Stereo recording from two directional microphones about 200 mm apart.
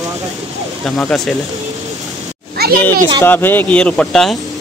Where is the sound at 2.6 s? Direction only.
50° right (ahead or behind).